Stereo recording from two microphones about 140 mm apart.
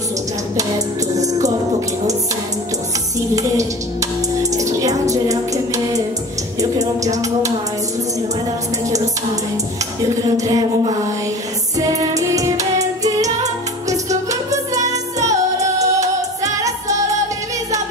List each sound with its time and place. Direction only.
3.3 s music: 25° right (ahead or behind)
10.0 s a sound: 25° right (ahead or behind)
11.8 s music: 25° right (ahead or behind)